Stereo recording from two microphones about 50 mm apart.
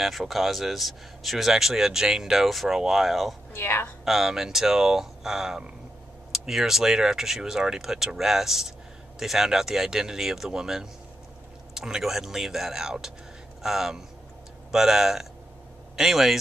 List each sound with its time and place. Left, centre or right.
0.0 s speech: centre
3.5 s a woman's voice: left
4.0 s speech: centre